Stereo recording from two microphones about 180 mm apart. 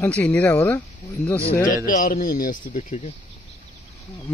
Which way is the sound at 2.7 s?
40° left (ahead or behind).